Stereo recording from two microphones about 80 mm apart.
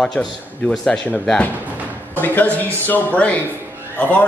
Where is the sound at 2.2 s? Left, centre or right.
Left.